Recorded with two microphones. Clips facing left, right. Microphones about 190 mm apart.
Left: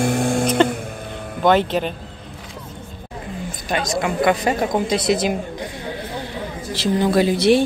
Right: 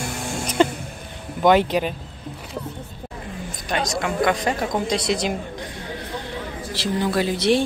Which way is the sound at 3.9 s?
5° left (ahead or behind).